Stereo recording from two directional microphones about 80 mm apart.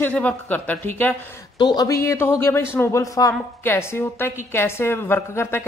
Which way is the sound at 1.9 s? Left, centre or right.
Left.